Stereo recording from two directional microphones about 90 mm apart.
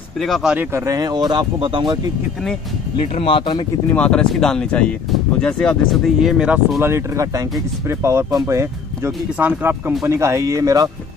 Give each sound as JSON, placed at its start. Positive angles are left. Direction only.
{"t": 0.2, "sound": "speech", "side_deg": 0}
{"t": 0.8, "sound": "speech", "side_deg": -45}
{"t": 1.6, "sound": "speech", "side_deg": -65}
{"t": 3.9, "sound": "speech", "side_deg": 15}
{"t": 6.3, "sound": "speech", "side_deg": -10}
{"t": 6.8, "sound": "speech", "side_deg": -35}
{"t": 9.4, "sound": "speech", "side_deg": -20}